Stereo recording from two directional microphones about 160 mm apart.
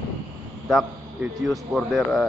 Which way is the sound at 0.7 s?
Centre (ahead or behind).